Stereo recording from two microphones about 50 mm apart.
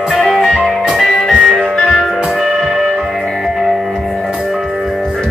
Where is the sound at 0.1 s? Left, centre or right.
Centre.